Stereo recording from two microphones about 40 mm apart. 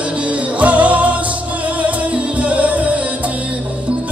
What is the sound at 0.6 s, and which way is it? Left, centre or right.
Music, right.